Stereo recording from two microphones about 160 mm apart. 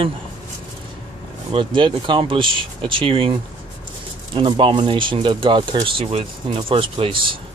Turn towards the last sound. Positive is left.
turn(degrees=-35)  # may be behind; listen again after turning